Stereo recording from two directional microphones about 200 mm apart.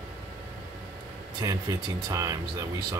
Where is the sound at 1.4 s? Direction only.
15° right (ahead or behind).